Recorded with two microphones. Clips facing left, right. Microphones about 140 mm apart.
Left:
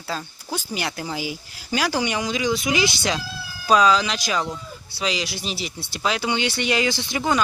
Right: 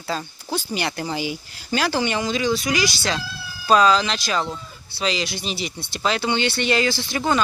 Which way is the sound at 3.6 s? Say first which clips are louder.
Right 1 dB; 10° left (ahead or behind).